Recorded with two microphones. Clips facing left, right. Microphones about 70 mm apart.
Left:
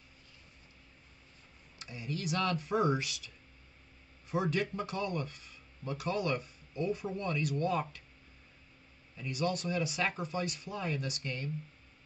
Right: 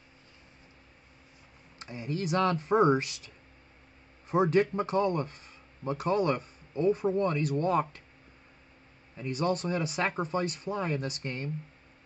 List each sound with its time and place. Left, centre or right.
1.8 s speech: right
4.3 s speech: right
9.1 s speech: right